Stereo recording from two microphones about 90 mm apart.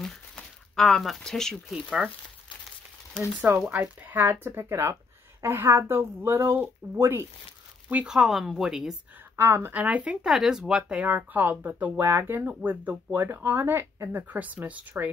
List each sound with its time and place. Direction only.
0.0 s a sound: 5° left (ahead or behind)
3.2 s speech: 10° left (ahead or behind)
3.7 s speech: 20° right (ahead or behind)
7.9 s speech: 15° right (ahead or behind)
8.2 s speech: 5° right (ahead or behind)
9.4 s speech: 25° right (ahead or behind)
9.8 s speech: 15° right (ahead or behind)
10.2 s speech: 5° right (ahead or behind)
11.1 s speech: 20° right (ahead or behind)